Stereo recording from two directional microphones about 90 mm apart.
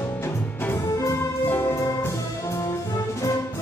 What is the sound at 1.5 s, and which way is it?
Music, 25° left (ahead or behind).